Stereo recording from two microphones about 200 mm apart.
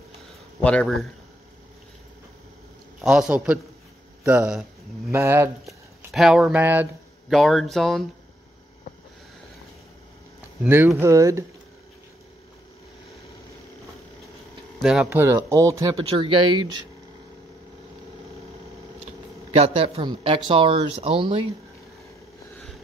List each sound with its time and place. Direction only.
0.7 s speech: 5° left (ahead or behind)
3.0 s a man's voice: 5° right (ahead or behind)
5.1 s speech: 15° right (ahead or behind)
5.7 s speech: centre (ahead or behind)
10.6 s speech: 10° right (ahead or behind)
14.8 s speech: centre (ahead or behind); by 16.8 s 20° right (ahead or behind)
19.5 s speech: 30° right (ahead or behind)